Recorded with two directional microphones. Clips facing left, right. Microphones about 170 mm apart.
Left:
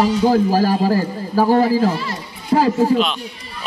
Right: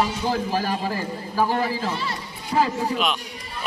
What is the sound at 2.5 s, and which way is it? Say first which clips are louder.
Music: left 6 dB; 45° left (ahead or behind).